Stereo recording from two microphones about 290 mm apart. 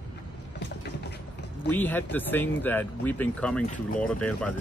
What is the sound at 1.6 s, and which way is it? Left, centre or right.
Speech, centre.